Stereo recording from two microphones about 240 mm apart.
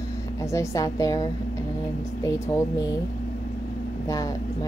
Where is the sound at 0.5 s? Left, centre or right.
Centre.